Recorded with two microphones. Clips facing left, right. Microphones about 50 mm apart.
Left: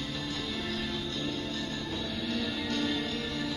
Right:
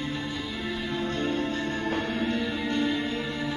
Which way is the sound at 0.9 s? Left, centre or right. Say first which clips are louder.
Right 7 dB; right.